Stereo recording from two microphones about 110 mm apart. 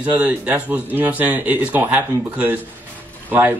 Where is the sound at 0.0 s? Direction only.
15° right (ahead or behind).